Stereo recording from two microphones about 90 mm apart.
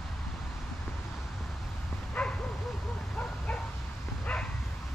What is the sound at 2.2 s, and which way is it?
Bow-wow, 5° left (ahead or behind).